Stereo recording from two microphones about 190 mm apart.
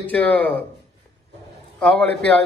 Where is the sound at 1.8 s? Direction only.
5° left (ahead or behind).